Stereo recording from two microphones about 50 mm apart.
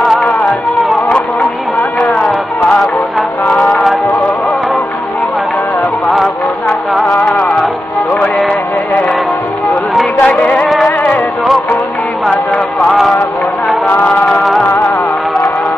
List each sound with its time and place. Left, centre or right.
10.2 s music: left
13.8 s music: left